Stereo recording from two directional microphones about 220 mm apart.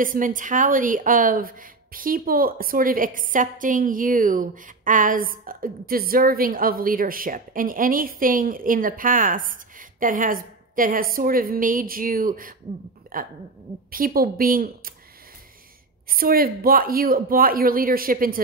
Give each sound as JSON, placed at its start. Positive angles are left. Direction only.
{"t": 0.0, "sound": "a woman's voice", "side_deg": -35}
{"t": 16.1, "sound": "a woman's voice", "side_deg": -40}